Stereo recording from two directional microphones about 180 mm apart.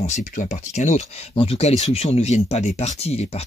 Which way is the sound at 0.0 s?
40° left (ahead or behind).